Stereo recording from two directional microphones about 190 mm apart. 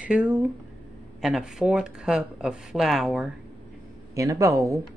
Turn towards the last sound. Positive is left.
turn(degrees=-15)  # may be behind; listen again after turning